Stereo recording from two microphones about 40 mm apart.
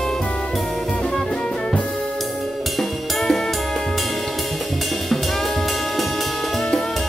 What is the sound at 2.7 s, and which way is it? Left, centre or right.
Music, centre.